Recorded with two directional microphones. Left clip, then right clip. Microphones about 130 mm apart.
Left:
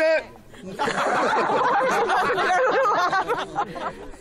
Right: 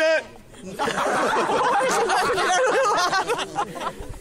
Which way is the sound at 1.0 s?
15° left (ahead or behind).